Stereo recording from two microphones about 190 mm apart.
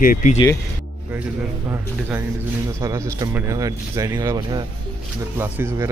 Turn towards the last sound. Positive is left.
turn(degrees=-10)  # may be behind; listen again after turning